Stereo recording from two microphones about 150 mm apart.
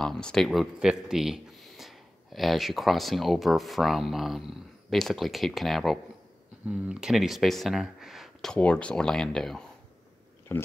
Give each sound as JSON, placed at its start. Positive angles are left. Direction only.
{"t": 0.0, "sound": "speech", "side_deg": 5}
{"t": 10.5, "sound": "speech", "side_deg": 15}